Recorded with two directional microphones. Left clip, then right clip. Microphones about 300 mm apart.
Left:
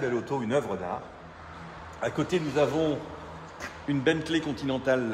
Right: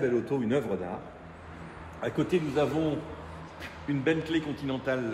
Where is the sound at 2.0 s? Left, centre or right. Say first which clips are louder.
Even; left.